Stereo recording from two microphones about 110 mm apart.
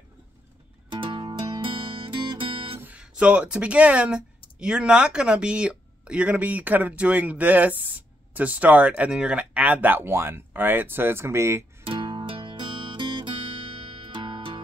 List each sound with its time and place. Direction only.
0.8 s music: 45° right (ahead or behind)
2.8 s speech: 10° right (ahead or behind)
11.8 s music: 50° right (ahead or behind)